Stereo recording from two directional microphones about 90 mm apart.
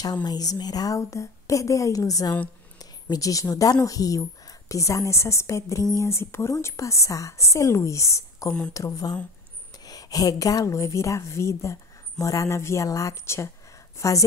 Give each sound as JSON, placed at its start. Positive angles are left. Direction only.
{"t": 0.0, "sound": "a woman's voice", "side_deg": 50}